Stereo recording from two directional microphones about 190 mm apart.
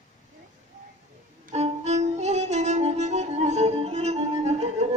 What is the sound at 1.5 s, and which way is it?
Music, 35° right (ahead or behind).